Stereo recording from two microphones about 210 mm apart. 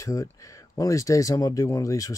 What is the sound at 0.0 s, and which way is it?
Speech, 15° left (ahead or behind).